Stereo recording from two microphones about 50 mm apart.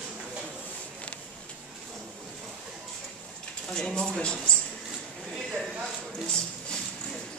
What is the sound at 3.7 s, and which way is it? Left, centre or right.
Speech, centre.